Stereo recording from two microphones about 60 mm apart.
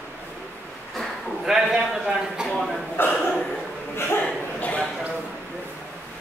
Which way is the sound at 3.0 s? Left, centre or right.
Left.